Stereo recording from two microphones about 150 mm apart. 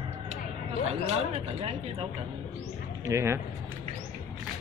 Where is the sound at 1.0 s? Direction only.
40° right (ahead or behind).